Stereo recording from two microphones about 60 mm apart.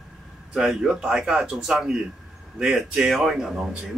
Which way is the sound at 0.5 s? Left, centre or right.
Centre.